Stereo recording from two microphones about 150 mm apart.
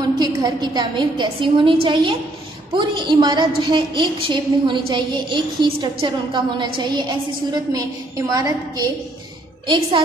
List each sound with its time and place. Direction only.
0.2 s a woman's voice: 25° right (ahead or behind)
8.3 s a woman's voice: 25° right (ahead or behind)